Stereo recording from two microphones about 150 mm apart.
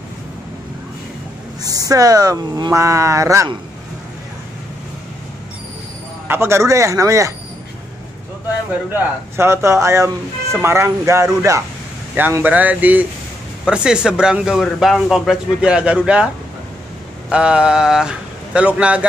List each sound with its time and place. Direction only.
1.6 s speech: 25° right (ahead or behind)
6.2 s speech: 15° right (ahead or behind)
8.9 s a man's voice: 15° right (ahead or behind)
17.3 s speech: 5° right (ahead or behind)